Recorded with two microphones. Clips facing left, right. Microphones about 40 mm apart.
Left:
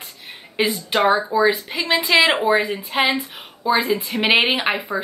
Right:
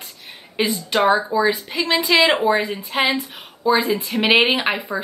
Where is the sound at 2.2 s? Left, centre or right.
Centre.